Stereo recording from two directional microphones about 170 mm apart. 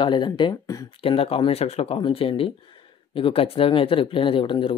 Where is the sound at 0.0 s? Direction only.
25° left (ahead or behind).